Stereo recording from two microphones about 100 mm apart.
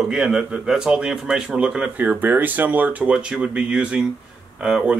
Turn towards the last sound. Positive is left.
turn(degrees=-10)  # may be behind; listen again after turning